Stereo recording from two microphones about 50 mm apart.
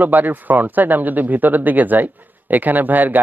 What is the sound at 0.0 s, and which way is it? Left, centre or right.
Speech, right.